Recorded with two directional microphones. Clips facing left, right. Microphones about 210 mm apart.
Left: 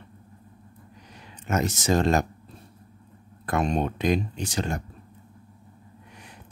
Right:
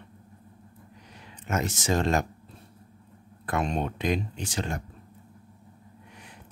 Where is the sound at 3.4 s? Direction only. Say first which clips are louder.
Left 3 dB; 40° left (ahead or behind).